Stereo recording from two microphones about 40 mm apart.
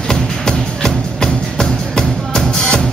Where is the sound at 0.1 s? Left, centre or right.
Centre.